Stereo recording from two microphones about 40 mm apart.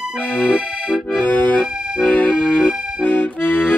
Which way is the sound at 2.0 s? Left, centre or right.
Left.